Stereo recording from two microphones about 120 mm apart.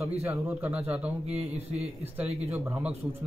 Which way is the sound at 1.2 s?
60° right (ahead or behind).